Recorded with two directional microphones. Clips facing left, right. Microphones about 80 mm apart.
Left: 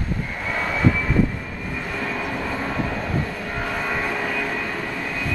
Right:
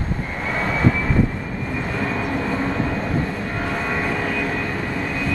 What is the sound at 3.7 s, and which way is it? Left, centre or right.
Vehicle, centre.